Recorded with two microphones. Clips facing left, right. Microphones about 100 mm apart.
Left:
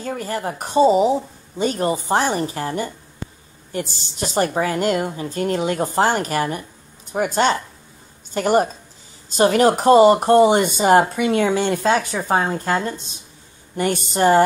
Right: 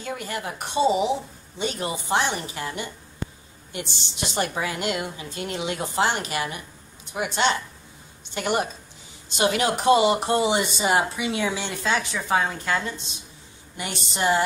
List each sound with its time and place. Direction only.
0.0 s a woman's voice: 40° left (ahead or behind)